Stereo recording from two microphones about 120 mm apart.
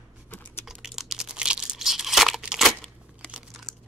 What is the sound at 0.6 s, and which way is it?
Tearing, 5° right (ahead or behind).